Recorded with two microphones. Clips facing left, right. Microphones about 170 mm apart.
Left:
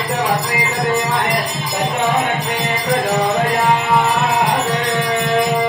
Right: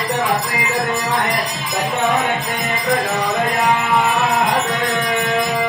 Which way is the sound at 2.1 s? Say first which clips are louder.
Left 1 dB; 20° left (ahead or behind).